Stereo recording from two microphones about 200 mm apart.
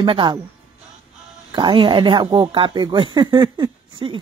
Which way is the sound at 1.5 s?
25° right (ahead or behind).